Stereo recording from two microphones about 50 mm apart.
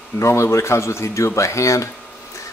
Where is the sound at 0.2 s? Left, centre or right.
Left.